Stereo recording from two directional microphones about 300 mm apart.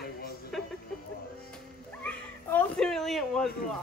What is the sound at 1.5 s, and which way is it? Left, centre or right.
Music, centre.